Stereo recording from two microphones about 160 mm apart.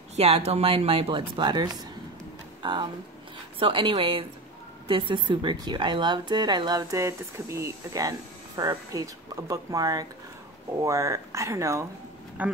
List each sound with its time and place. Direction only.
0.1 s a woman's voice: 40° right (ahead or behind); by 12.5 s 10° right (ahead or behind)